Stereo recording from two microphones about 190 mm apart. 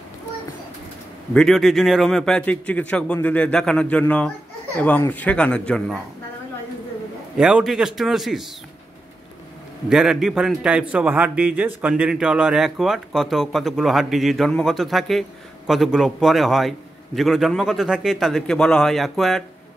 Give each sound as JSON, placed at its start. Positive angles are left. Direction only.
{"t": 1.3, "sound": "a man's voice", "side_deg": 0}
{"t": 7.3, "sound": "a man's voice", "side_deg": -5}
{"t": 9.8, "sound": "a man's voice", "side_deg": 0}